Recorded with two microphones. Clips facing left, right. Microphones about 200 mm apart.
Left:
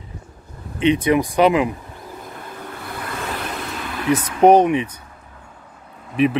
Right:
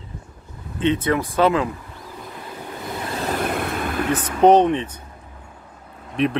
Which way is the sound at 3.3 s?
55° right (ahead or behind).